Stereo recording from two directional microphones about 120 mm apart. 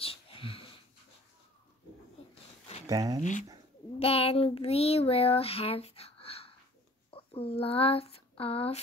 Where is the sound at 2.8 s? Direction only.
30° right (ahead or behind).